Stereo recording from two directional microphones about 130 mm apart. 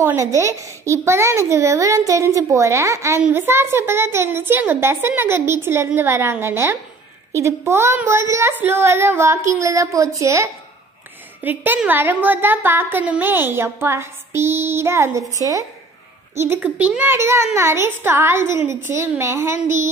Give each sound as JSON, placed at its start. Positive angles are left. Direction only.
{"t": 0.0, "sound": "a child's voice", "side_deg": -20}
{"t": 16.3, "sound": "a woman's voice", "side_deg": -15}